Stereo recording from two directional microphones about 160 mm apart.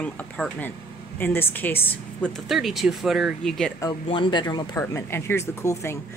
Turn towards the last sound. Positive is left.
turn(degrees=15)  # may be behind; listen again after turning